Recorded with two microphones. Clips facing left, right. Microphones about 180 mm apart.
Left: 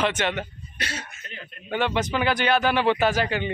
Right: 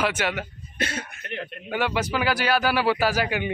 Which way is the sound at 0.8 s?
55° right (ahead or behind).